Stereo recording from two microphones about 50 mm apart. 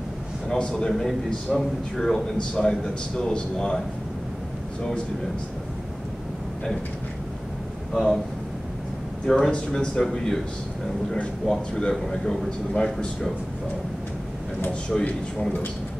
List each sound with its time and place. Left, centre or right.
0.5 s a man's voice: centre
0.9 s a man's voice: centre
7.9 s speech: centre
9.2 s a man's voice: centre
9.5 s a man's voice: centre
10.0 s a man's voice: centre
11.4 s a man's voice: centre
14.9 s a man's voice: centre